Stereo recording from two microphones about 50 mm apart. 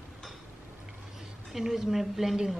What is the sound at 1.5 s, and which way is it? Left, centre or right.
A woman's voice, centre.